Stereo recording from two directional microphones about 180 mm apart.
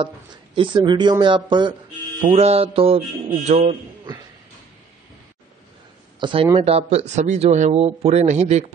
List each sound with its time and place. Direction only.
0.6 s speech: 25° right (ahead or behind)
6.1 s speech: 30° right (ahead or behind)